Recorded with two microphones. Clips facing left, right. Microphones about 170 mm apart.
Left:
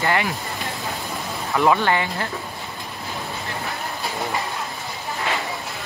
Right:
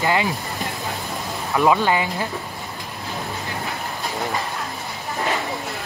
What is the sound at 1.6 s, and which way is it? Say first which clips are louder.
Speech: right 1 dB; 15° right (ahead or behind).